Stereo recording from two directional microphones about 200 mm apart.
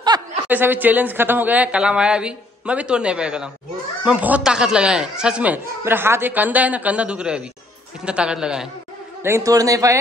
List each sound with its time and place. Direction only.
0.1 s snicker: 20° right (ahead or behind)
0.5 s a man's voice: 10° right (ahead or behind)
9.2 s speech: 15° right (ahead or behind)